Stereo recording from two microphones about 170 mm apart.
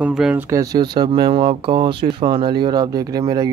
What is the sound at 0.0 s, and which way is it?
Speech, 5° right (ahead or behind).